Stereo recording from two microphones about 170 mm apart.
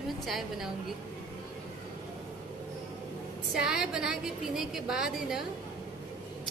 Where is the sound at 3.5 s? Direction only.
5° right (ahead or behind).